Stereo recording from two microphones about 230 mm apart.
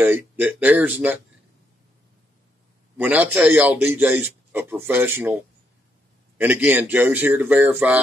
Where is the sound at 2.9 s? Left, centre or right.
Centre.